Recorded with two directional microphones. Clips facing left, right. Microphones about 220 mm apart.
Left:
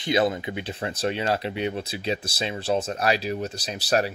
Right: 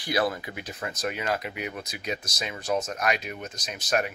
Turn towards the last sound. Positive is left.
turn(degrees=35)  # may be behind; listen again after turning